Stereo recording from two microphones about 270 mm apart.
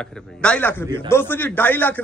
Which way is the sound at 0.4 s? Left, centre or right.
Centre.